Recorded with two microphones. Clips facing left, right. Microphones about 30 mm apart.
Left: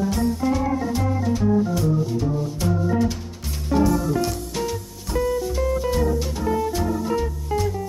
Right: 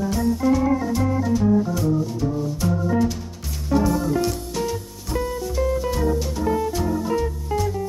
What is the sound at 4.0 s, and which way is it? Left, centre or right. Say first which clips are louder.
Music: right 1 dB; centre.